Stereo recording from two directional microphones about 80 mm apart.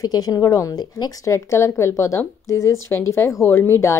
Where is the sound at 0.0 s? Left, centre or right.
Left.